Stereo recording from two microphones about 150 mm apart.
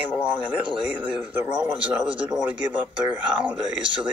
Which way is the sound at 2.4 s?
10° right (ahead or behind).